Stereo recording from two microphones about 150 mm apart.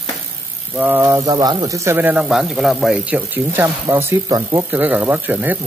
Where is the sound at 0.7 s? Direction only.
10° right (ahead or behind).